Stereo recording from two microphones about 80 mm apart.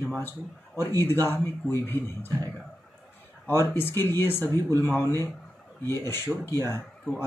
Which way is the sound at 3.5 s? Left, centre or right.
Left.